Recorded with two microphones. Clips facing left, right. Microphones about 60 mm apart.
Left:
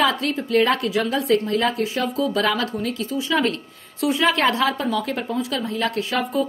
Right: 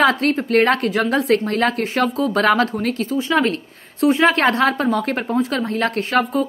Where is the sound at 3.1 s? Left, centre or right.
Right.